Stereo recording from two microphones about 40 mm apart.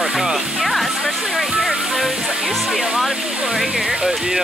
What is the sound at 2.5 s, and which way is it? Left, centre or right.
Speech, centre.